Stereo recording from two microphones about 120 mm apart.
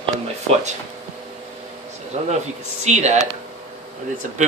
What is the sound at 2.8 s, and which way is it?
Speech, 70° right (ahead or behind).